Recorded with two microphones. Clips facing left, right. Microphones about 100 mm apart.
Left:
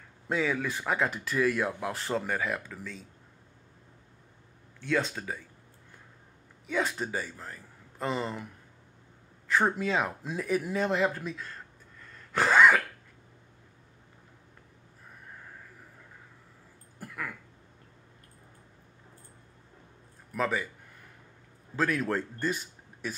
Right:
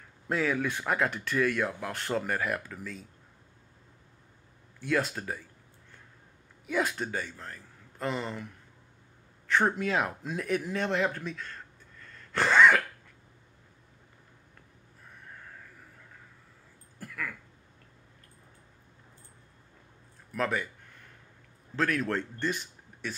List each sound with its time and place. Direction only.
0.3 s speech: centre (ahead or behind)
4.7 s speech: 10° right (ahead or behind)
6.6 s speech: centre (ahead or behind)
9.5 s speech: centre (ahead or behind)
12.3 s cough: 10° left (ahead or behind)
17.0 s a sound: 20° left (ahead or behind)
20.3 s speech: centre (ahead or behind)
21.7 s speech: 5° left (ahead or behind)